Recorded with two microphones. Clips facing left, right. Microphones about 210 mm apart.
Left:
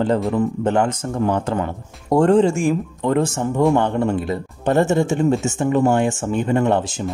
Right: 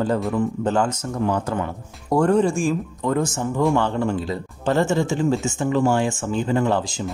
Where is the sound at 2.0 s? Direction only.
25° left (ahead or behind).